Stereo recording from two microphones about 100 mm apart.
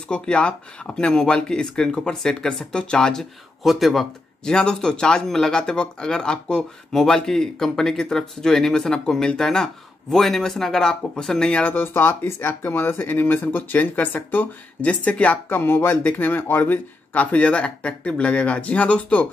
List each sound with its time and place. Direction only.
0.1 s speech: 10° left (ahead or behind)